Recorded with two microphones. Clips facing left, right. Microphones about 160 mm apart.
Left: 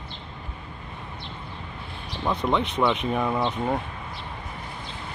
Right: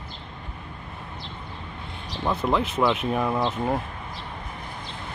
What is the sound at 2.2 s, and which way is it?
Speech, centre (ahead or behind).